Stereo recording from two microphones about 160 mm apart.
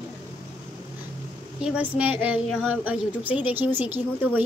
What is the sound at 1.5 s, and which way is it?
A woman's voice, 5° right (ahead or behind).